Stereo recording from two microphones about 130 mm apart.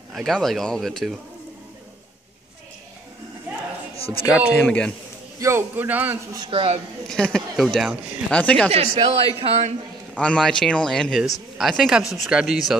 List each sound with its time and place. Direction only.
0.1 s speech: centre (ahead or behind)
3.9 s a sound: 45° left (ahead or behind)
4.6 s a man's voice: 10° left (ahead or behind)
5.4 s a man's voice: 20° right (ahead or behind)
6.4 s speech: 45° right (ahead or behind)
7.1 s speech: 5° left (ahead or behind)
8.4 s a man's voice: 10° left (ahead or behind)
8.7 s a man's voice: 50° right (ahead or behind)
10.1 s speech: 5° left (ahead or behind)